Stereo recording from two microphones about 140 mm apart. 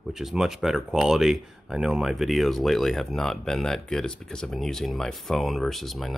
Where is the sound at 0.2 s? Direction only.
5° right (ahead or behind).